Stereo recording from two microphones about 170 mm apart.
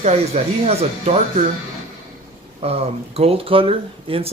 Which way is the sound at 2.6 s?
35° right (ahead or behind).